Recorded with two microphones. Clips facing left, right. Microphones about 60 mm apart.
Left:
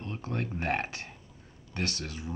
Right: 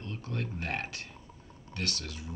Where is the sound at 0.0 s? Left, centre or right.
Left.